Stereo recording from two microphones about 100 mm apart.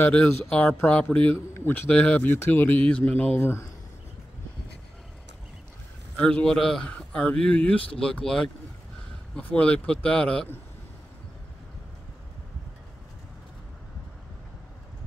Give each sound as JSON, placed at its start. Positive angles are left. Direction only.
{"t": 0.0, "sound": "speech", "side_deg": 10}
{"t": 6.1, "sound": "speech", "side_deg": 10}